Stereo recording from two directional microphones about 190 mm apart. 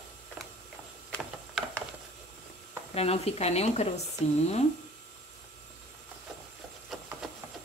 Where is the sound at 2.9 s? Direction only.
35° left (ahead or behind).